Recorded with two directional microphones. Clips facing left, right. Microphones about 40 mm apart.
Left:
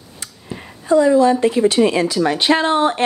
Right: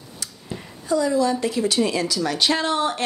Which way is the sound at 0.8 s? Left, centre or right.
Left.